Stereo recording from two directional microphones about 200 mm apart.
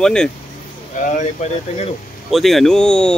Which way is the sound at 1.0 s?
35° left (ahead or behind).